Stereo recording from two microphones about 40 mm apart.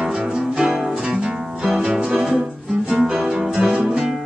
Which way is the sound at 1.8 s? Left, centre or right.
Right.